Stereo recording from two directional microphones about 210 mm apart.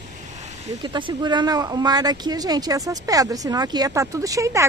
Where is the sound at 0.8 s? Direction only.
20° right (ahead or behind).